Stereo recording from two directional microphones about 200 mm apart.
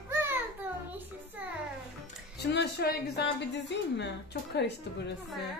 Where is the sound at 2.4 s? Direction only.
60° left (ahead or behind).